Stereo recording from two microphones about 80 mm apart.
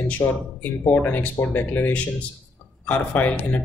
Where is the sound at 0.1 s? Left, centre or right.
Centre.